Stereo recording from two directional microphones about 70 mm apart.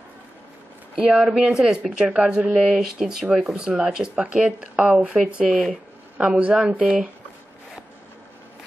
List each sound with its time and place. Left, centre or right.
1.0 s a woman's voice: centre